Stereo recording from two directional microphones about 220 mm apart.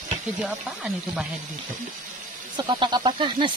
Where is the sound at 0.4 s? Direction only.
5° right (ahead or behind).